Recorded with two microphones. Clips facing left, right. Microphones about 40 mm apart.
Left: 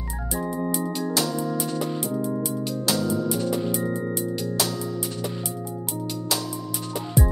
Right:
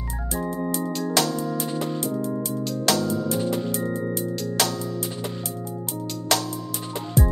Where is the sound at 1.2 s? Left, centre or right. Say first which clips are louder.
Right 4 dB; right.